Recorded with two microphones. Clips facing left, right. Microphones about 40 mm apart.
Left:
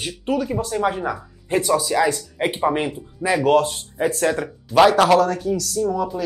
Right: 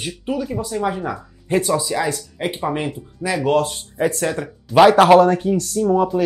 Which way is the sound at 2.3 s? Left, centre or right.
Centre.